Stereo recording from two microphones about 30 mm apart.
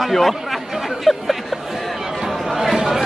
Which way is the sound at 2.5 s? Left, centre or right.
Centre.